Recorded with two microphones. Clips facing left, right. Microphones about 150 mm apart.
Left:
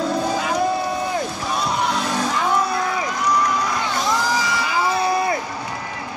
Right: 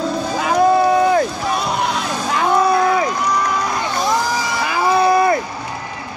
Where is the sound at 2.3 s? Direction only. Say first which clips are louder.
Right 9 dB; 70° right (ahead or behind).